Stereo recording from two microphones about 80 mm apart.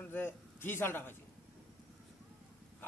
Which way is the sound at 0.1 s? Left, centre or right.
Left.